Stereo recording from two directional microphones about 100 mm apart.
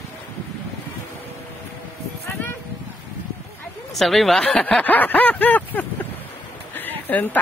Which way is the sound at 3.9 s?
Centre (ahead or behind).